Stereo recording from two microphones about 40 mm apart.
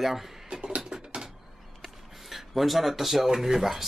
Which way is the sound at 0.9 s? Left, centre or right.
Centre.